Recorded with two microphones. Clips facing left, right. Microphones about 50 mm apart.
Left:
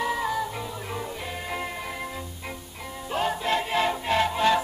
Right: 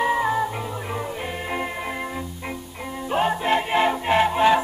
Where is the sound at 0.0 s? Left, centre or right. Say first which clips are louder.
Right 6 dB; right.